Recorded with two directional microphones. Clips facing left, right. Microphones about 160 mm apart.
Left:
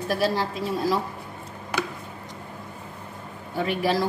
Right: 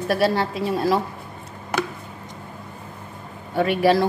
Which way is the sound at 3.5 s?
65° right (ahead or behind).